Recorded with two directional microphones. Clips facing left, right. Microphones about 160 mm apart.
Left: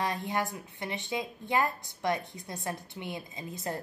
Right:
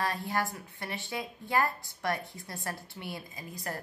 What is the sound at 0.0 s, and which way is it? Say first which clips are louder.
Speech: left 1 dB; 20° left (ahead or behind).